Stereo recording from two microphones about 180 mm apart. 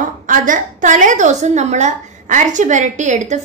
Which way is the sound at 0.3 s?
45° right (ahead or behind).